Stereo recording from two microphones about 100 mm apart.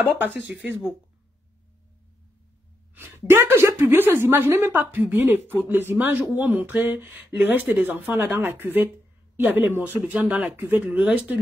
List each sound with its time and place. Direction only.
0.0 s speech: 20° right (ahead or behind)
2.9 s a sound: 25° right (ahead or behind)
3.3 s speech: 25° right (ahead or behind)